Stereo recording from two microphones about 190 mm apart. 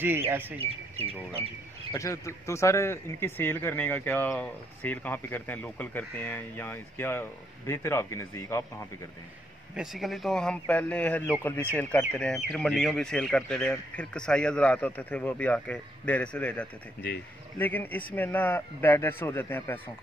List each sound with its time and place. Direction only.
0.0 s speech: 10° right (ahead or behind)
0.6 s speech: 30° right (ahead or behind)
1.9 s speech: 15° left (ahead or behind)
9.8 s speech: centre (ahead or behind)